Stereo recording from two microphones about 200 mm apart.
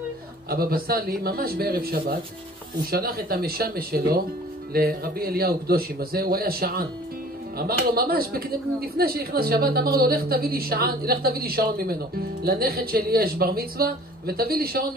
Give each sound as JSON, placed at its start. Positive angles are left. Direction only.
{"t": 0.5, "sound": "speech", "side_deg": -50}